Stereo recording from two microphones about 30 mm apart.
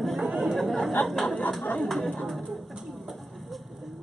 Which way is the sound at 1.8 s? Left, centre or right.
Centre.